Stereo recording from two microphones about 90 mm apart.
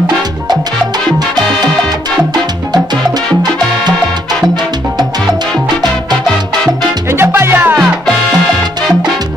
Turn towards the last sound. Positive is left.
turn(degrees=-25)  # may be behind; listen again after turning